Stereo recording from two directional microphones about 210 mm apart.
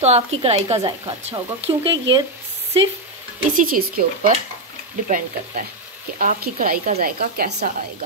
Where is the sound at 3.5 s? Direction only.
45° right (ahead or behind).